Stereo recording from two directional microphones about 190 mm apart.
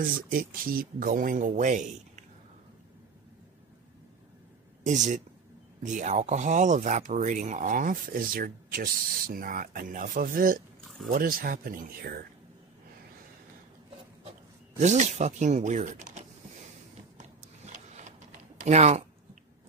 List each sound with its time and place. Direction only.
0.0 s speech: 50° right (ahead or behind)
4.8 s speech: 40° right (ahead or behind)
14.8 s speech: 40° right (ahead or behind)
17.7 s printer: 40° right (ahead or behind)
18.6 s speech: 35° right (ahead or behind)